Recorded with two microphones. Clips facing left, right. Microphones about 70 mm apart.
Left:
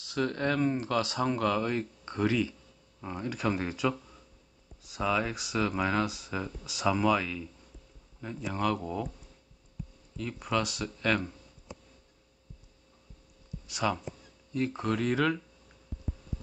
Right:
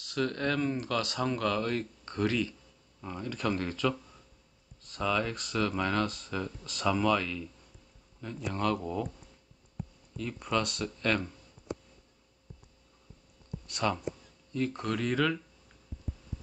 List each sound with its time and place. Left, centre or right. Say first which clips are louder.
0.0 s a man's voice: left 1 dB; left; by 9.1 s centre
10.1 s speech: even; centre
11.7 s a sound: right 9 dB; right
13.7 s speech: even; centre; by 15.3 s left